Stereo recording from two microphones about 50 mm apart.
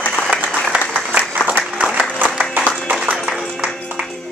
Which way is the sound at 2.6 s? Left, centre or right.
Right.